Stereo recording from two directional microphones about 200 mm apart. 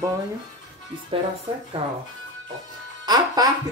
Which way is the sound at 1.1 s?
25° right (ahead or behind).